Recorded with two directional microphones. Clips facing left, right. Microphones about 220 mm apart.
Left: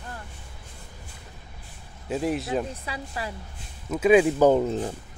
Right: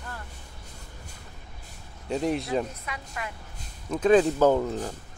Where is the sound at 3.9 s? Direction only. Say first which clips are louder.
Left 2 dB; 10° left (ahead or behind).